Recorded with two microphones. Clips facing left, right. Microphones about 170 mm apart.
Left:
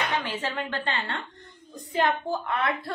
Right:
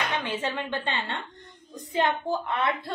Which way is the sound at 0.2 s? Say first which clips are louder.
Right 1 dB; 20° right (ahead or behind).